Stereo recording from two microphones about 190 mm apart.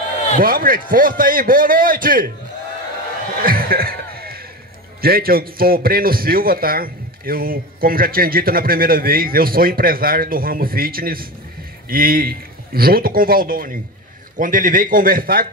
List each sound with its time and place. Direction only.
0.4 s a man's voice: 50° right (ahead or behind)
3.4 s music: 50° right (ahead or behind)
5.0 s a man's voice: 50° right (ahead or behind)